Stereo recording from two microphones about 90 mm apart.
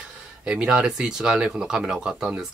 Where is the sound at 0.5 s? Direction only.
10° right (ahead or behind).